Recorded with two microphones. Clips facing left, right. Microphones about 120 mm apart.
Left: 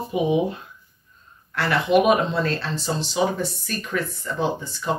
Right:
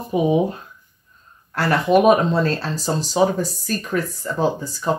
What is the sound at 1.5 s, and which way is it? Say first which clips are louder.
Speech: right 3 dB; 40° right (ahead or behind).